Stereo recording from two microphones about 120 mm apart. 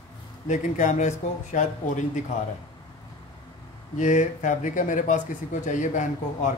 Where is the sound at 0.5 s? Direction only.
90° left.